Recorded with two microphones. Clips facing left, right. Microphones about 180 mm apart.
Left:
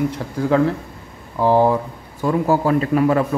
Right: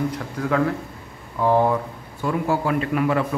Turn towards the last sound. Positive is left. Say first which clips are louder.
# left 5 dB
turn(degrees=40)  # may be behind; listen again after turning